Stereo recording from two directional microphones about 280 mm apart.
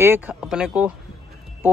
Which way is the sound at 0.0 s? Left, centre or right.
Centre.